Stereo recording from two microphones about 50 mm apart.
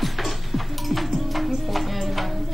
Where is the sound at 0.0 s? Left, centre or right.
Centre.